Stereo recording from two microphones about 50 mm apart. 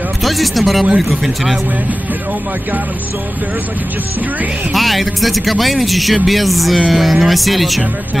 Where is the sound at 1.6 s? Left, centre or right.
Right.